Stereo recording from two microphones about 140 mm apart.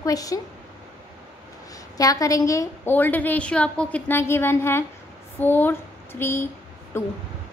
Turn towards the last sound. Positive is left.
turn(degrees=20)  # may be behind; listen again after turning